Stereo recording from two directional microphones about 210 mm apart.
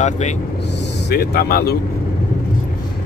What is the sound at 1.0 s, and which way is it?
Speech, 50° left (ahead or behind).